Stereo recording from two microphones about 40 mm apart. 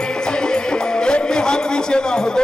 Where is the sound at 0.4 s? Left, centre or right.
Left.